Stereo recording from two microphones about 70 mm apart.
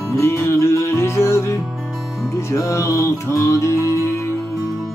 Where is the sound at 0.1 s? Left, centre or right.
Left.